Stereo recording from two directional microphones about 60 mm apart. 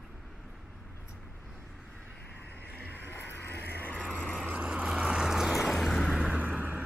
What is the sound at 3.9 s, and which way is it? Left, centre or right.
Vehicle, centre.